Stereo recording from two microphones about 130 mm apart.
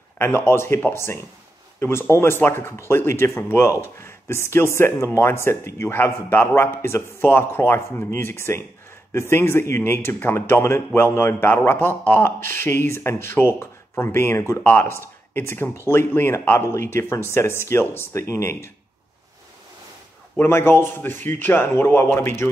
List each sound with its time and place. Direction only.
0.2 s a man's voice: 20° left (ahead or behind)
20.3 s a man's voice: 20° left (ahead or behind)